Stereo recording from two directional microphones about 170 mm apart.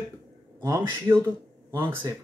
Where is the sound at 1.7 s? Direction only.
15° right (ahead or behind).